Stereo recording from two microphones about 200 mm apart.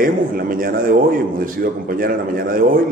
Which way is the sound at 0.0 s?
45° right (ahead or behind).